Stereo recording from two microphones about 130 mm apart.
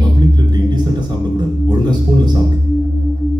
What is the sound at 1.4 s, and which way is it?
Music, 35° right (ahead or behind).